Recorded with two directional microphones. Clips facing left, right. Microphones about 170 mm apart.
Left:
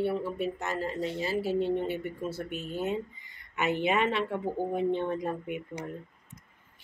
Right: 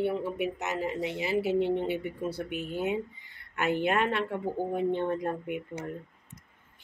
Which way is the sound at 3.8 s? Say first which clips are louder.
Even; centre (ahead or behind).